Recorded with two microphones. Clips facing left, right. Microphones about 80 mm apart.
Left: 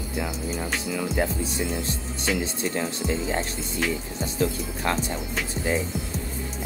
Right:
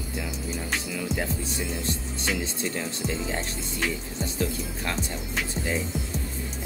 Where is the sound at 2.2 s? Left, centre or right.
Centre.